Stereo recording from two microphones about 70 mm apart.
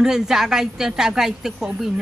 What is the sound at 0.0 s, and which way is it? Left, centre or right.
A woman's voice, centre.